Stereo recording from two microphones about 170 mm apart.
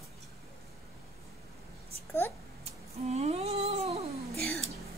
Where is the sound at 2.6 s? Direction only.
40° right (ahead or behind).